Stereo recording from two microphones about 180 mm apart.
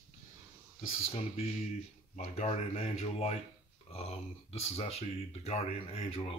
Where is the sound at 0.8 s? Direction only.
35° left (ahead or behind).